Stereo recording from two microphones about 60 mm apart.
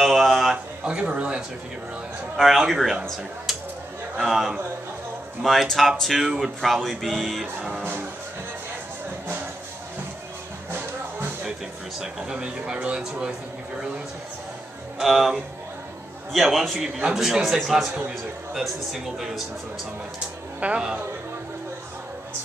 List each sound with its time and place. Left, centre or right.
0.0 s a sound: centre
0.8 s speech: right
2.3 s a man's voice: centre
4.2 s speech: centre
12.0 s a man's voice: centre
15.0 s a man's voice: centre
20.6 s a man's voice: centre